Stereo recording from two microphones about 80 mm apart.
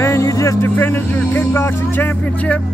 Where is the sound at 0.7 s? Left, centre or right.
Left.